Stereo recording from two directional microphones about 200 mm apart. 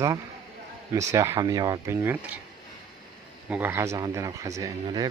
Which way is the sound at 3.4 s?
10° right (ahead or behind).